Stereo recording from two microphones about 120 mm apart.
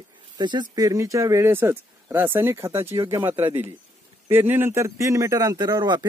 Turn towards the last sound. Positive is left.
turn(degrees=-35)  # may be behind; listen again after turning